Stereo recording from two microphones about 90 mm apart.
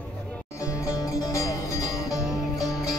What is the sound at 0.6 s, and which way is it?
Music, 35° left (ahead or behind).